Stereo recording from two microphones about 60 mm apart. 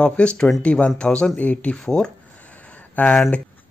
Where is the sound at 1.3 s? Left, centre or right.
Left.